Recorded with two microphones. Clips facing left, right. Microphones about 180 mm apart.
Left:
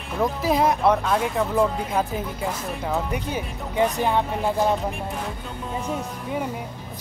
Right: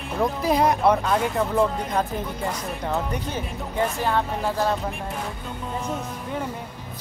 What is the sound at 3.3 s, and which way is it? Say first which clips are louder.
Speech: left 1 dB; 15° left (ahead or behind).